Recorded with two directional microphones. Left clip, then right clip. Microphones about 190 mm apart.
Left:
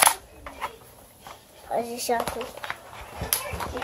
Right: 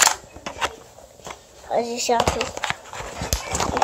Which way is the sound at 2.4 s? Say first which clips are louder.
Right 8 dB; 55° right (ahead or behind).